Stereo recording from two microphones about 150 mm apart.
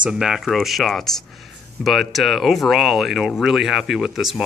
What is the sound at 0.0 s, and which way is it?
Speech, 5° right (ahead or behind).